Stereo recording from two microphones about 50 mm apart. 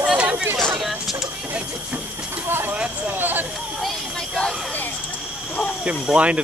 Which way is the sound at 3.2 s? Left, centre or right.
Right.